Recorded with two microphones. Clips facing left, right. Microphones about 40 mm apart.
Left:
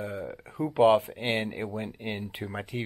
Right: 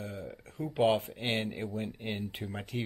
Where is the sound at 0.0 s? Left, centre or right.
Centre.